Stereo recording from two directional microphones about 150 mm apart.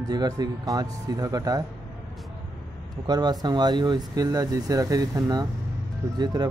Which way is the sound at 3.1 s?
30° right (ahead or behind).